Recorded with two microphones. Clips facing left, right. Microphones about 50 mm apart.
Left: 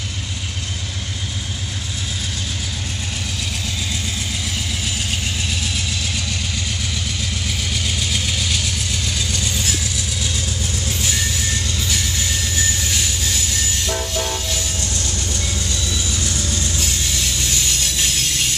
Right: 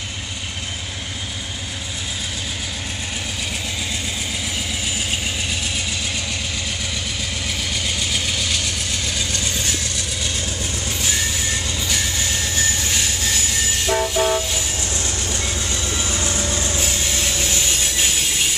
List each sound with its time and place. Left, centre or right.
5.5 s vehicle: centre
7.7 s vehicle: centre
13.8 s train: centre
15.0 s train: right
17.9 s a sound: centre